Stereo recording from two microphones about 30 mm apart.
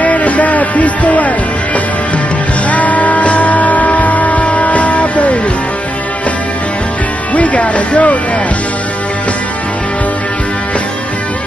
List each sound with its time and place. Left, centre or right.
0.0 s music: left
2.7 s music: left
7.3 s speech: left